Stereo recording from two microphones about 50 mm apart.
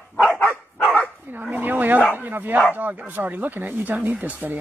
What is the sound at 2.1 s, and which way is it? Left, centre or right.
Bow-wow, right.